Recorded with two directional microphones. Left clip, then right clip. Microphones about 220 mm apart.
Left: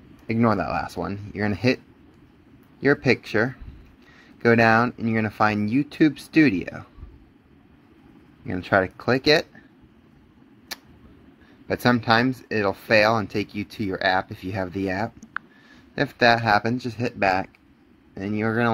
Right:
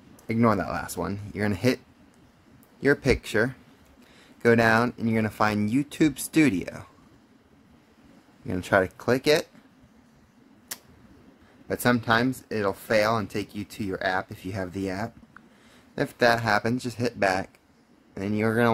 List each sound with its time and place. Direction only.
0.3 s speech: 5° right (ahead or behind)
2.8 s speech: 5° right (ahead or behind)
8.5 s speech: 5° right (ahead or behind)
11.6 s speech: 5° left (ahead or behind)